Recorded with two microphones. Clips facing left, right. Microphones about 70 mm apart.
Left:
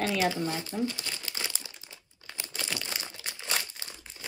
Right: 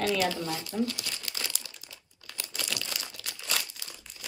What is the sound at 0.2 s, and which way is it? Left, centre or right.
Speech, left.